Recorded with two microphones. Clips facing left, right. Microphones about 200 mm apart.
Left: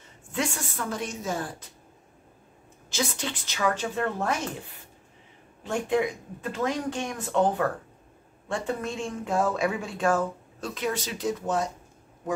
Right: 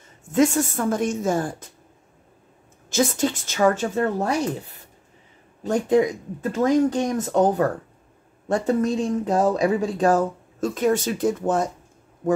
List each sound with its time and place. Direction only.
0.3 s speech: 45° right (ahead or behind)
2.9 s speech: 45° right (ahead or behind)